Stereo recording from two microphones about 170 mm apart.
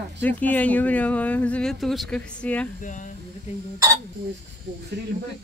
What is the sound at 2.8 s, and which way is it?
Speech, 50° left (ahead or behind).